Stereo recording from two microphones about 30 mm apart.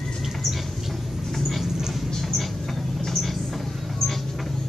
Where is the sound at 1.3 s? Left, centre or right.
Centre.